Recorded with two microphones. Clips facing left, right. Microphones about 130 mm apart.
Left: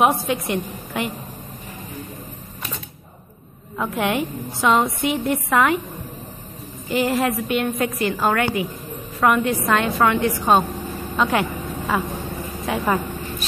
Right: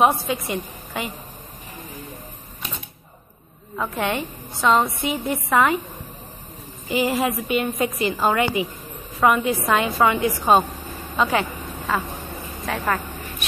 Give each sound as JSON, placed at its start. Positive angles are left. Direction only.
{"t": 0.0, "sound": "a woman's voice", "side_deg": 0}
{"t": 3.7, "sound": "a woman's voice", "side_deg": 5}
{"t": 6.9, "sound": "a woman's voice", "side_deg": -5}